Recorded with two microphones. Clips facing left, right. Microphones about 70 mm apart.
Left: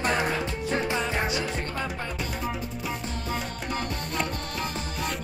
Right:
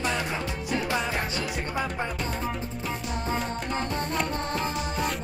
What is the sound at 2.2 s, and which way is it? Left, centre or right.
Music, centre.